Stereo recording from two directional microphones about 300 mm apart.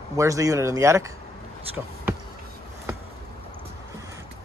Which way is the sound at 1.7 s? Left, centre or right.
Centre.